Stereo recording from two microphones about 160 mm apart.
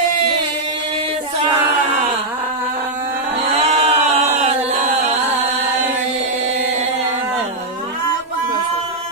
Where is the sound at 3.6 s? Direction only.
40° right (ahead or behind).